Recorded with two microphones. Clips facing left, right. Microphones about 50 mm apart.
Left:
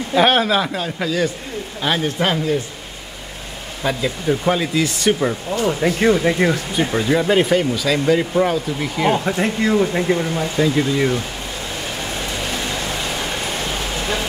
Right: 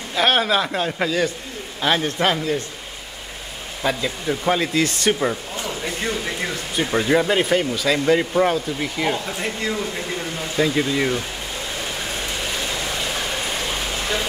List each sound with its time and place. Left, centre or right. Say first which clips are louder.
0.1 s speech: left 3 dB; centre
0.7 s speech: even; centre
3.8 s speech: left 2 dB; centre
5.7 s speech: left 10 dB; left
6.9 s speech: even; centre
9.8 s speech: left 9 dB; left
10.6 s speech: left 2 dB; centre